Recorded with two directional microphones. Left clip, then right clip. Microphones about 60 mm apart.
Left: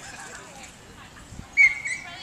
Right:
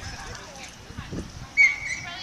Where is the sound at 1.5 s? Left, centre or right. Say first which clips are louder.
Left 1 dB; left.